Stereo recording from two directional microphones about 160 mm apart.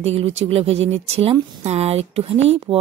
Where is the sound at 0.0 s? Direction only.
40° right (ahead or behind).